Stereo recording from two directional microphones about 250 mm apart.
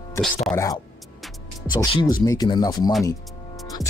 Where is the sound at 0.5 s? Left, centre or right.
Centre.